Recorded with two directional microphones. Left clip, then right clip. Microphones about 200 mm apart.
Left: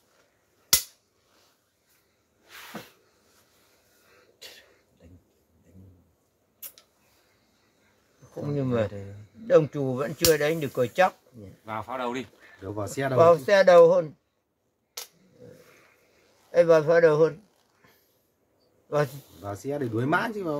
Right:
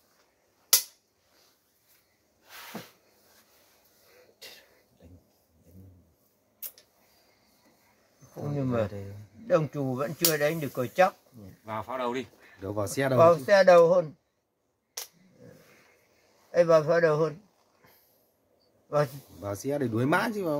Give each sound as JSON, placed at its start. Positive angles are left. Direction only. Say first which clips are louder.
{"t": 8.5, "sound": "speech", "louder": "left 2 dB", "side_deg": 40}
{"t": 11.6, "sound": "speech", "louder": "left 1 dB", "side_deg": 5}
{"t": 12.6, "sound": "speech", "louder": "right 1 dB", "side_deg": -35}
{"t": 13.2, "sound": "speech", "louder": "left 2 dB", "side_deg": 30}
{"t": 16.5, "sound": "speech", "louder": "left 3 dB", "side_deg": 35}
{"t": 18.9, "sound": "speech", "louder": "left 1 dB", "side_deg": 35}
{"t": 19.4, "sound": "speech", "louder": "right 1 dB", "side_deg": -35}